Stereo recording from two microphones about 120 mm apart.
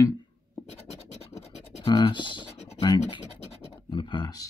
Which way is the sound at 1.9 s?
45° left (ahead or behind).